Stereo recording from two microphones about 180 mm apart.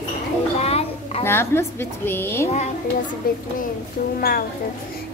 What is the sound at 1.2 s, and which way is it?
A woman's voice, 15° left (ahead or behind).